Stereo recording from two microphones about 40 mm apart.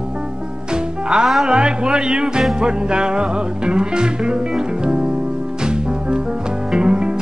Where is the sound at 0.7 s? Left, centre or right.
Right.